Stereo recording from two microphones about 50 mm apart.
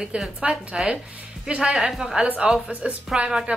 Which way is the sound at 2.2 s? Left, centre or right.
Right.